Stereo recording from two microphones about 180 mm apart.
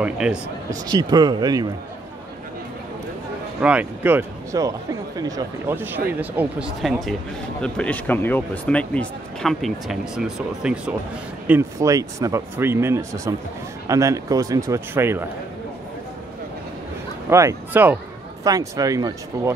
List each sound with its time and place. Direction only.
0.0 s speech: 5° right (ahead or behind)
0.7 s speech: 20° right (ahead or behind)
3.6 s speech: 10° right (ahead or behind)
17.3 s speech: 15° right (ahead or behind)